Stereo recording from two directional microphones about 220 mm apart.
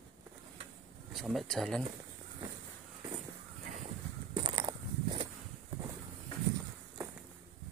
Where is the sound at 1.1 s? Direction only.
Centre (ahead or behind).